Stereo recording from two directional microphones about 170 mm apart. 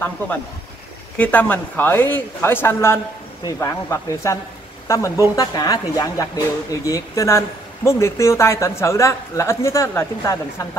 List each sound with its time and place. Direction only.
1.1 s speech: 10° left (ahead or behind)